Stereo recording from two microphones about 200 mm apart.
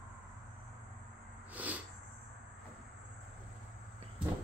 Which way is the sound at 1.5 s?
10° right (ahead or behind).